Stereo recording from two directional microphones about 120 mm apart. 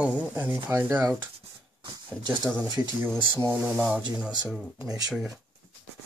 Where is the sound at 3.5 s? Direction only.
10° right (ahead or behind).